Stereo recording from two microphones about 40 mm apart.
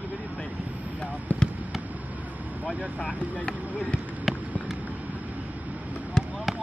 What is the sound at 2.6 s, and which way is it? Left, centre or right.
Speech, right.